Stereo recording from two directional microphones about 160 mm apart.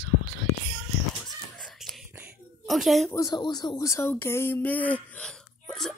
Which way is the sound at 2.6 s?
Centre (ahead or behind).